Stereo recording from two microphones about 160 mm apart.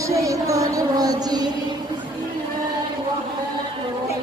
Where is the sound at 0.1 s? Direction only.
20° right (ahead or behind).